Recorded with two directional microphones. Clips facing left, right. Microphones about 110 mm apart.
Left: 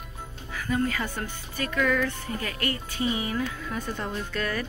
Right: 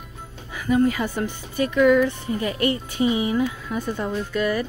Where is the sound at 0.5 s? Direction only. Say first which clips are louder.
Right 7 dB; 15° right (ahead or behind).